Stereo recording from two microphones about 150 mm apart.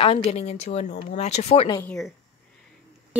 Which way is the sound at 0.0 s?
45° left (ahead or behind).